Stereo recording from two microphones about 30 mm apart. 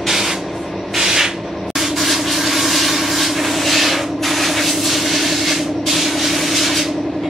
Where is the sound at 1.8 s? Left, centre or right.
Centre.